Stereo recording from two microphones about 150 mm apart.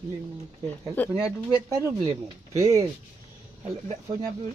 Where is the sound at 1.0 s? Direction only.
10° left (ahead or behind).